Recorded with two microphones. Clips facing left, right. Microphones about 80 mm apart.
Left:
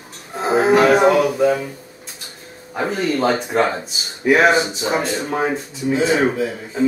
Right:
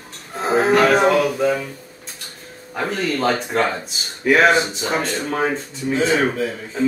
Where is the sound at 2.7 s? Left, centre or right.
Centre.